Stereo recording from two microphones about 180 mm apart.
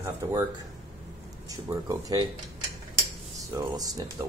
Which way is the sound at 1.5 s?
20° right (ahead or behind).